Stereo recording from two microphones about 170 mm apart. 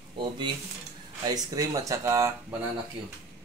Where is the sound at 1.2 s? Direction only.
20° right (ahead or behind).